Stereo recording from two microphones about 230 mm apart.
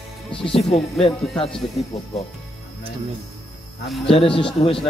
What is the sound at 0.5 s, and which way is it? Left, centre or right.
Speech, left.